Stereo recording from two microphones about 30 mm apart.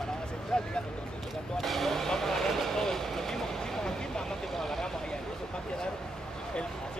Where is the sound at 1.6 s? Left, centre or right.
Centre.